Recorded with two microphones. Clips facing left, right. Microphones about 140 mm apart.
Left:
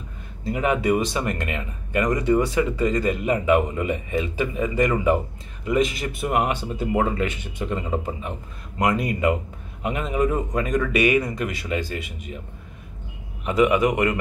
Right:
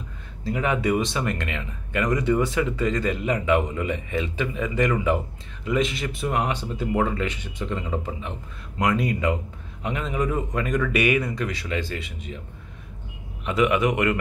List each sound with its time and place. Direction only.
0.5 s a man's voice: 10° left (ahead or behind)
13.5 s speech: 5° left (ahead or behind)